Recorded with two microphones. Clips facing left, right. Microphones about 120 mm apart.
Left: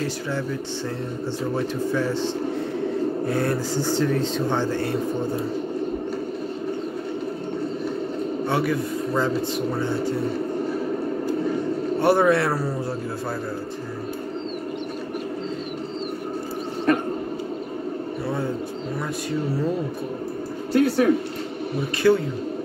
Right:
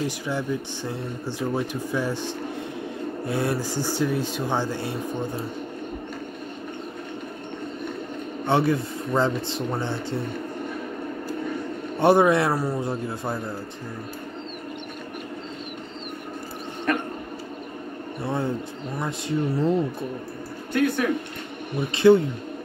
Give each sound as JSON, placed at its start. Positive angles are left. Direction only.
{"t": 1.5, "sound": "speech", "side_deg": -15}
{"t": 8.5, "sound": "a man's voice", "side_deg": -25}
{"t": 12.0, "sound": "speech", "side_deg": -20}
{"t": 18.9, "sound": "a man's voice", "side_deg": -20}
{"t": 20.7, "sound": "speech", "side_deg": 35}
{"t": 22.0, "sound": "a man's voice", "side_deg": -20}